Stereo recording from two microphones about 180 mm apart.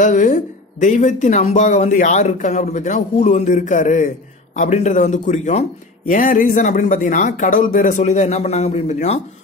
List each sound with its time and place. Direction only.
0.0 s a man's voice: 45° left (ahead or behind)